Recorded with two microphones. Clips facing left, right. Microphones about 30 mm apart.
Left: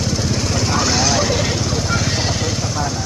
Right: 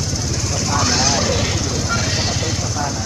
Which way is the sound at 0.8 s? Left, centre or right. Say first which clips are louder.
Even; centre.